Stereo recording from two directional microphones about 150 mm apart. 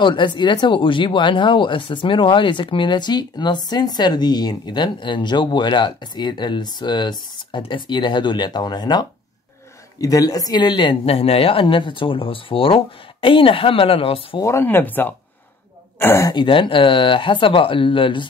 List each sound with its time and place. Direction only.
0.0 s speech: 30° left (ahead or behind)
14.4 s speech: 15° left (ahead or behind)
16.3 s speech: 35° left (ahead or behind)